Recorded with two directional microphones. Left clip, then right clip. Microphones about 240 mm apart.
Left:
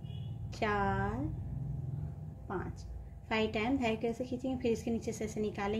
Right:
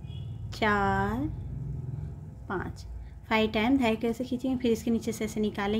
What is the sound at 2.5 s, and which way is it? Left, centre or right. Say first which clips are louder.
A woman's voice: right 6 dB; centre.